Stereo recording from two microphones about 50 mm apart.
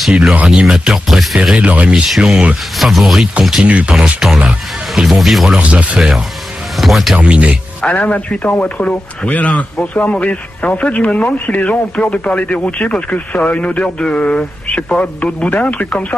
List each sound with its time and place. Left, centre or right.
0.1 s speech: right
1.6 s speech: right
2.0 s speech: centre
3.6 s speech: right
3.9 s speech: centre
5.6 s speech: right
5.9 s speech: centre
7.2 s speech: right
7.8 s speech: left